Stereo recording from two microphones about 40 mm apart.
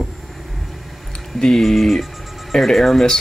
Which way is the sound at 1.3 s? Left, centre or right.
Centre.